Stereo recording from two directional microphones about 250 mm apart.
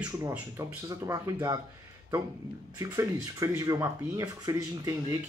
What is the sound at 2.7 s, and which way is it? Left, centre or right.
Speech, centre.